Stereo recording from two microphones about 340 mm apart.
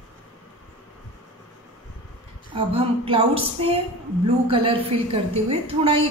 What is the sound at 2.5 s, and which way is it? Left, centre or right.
A woman's voice, centre.